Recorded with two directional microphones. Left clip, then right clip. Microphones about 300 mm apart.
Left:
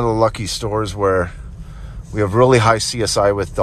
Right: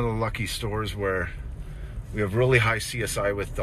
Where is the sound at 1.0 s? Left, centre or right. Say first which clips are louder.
Left 12 dB; left.